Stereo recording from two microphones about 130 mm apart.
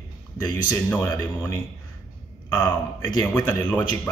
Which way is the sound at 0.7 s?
15° left (ahead or behind).